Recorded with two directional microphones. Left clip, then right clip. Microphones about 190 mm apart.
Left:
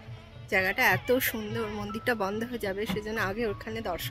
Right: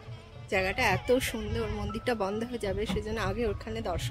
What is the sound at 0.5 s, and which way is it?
Speech, 5° left (ahead or behind).